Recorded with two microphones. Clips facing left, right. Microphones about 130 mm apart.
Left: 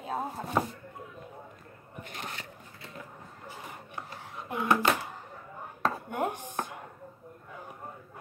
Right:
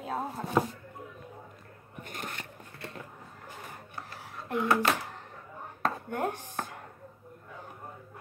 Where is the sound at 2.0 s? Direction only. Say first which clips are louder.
Right 1 dB; 50° right (ahead or behind).